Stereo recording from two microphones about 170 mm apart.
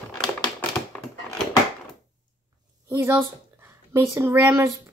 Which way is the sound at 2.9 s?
15° right (ahead or behind).